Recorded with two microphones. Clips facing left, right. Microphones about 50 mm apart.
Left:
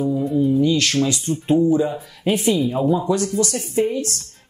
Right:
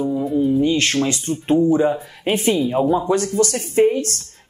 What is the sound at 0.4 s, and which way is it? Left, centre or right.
Speech, right.